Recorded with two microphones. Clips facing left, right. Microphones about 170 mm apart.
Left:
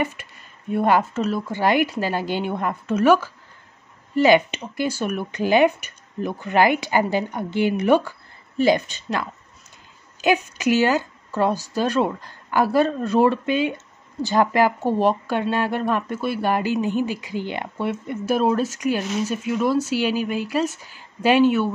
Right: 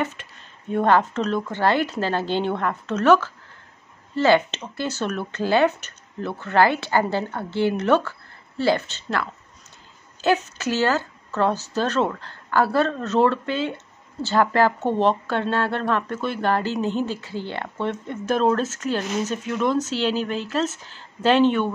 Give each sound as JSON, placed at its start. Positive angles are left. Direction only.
{"t": 0.0, "sound": "speech", "side_deg": 10}